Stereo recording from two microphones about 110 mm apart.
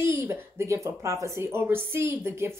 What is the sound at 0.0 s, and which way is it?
Speech, 20° right (ahead or behind).